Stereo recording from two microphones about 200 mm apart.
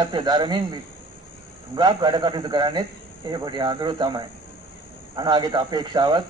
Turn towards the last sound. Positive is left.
turn(degrees=-25)  # may be behind; listen again after turning